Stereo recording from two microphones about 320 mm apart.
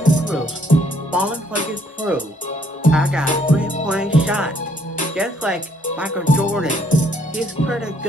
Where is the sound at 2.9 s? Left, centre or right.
Centre.